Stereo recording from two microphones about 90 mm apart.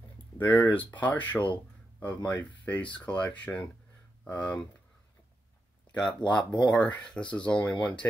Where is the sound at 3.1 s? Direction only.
15° left (ahead or behind).